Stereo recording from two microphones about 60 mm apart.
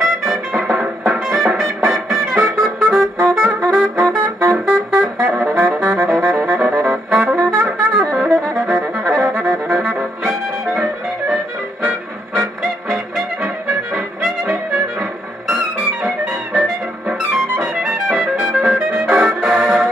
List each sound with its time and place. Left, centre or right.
0.0 s music: centre
3.6 s brass instrument: right
5.4 s saxophone: right
7.1 s brass instrument: centre
7.6 s music: centre
9.1 s brass instrument: centre
12.9 s music: centre
14.7 s music: right
17.3 s music: centre